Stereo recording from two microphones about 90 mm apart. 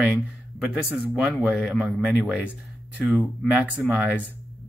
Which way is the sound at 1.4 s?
10° right (ahead or behind).